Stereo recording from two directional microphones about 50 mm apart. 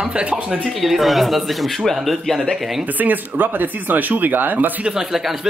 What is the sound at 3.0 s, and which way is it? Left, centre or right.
Speech, right.